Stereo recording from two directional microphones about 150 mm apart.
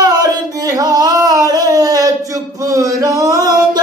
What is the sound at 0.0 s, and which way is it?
Singing, 25° right (ahead or behind).